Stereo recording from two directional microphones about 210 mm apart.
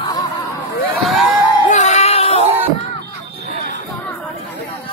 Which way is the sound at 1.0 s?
Centre (ahead or behind).